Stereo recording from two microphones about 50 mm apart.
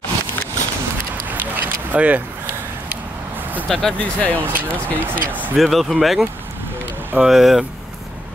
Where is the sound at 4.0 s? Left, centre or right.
Left.